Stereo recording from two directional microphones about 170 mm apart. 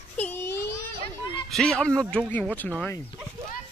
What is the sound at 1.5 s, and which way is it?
Speech, 5° left (ahead or behind).